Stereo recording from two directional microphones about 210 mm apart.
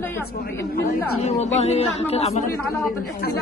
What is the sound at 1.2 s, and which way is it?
Speech, 30° left (ahead or behind).